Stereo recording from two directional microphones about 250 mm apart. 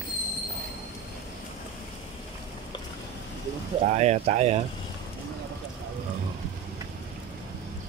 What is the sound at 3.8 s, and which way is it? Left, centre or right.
Speech, right.